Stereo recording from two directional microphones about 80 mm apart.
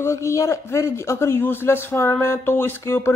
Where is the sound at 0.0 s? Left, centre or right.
Left.